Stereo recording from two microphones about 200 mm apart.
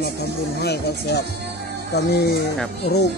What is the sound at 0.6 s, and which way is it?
Speech, 55° left (ahead or behind).